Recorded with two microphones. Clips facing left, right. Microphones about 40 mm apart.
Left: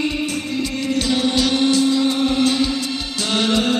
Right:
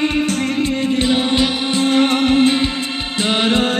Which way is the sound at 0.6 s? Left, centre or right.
Right.